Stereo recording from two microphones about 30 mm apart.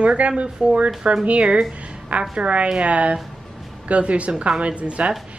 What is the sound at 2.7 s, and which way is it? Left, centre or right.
A woman's voice, right.